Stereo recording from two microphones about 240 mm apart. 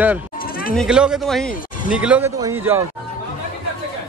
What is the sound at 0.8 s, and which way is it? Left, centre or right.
A man's voice, centre.